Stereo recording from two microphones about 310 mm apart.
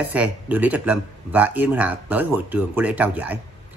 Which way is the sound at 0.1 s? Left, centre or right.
Centre.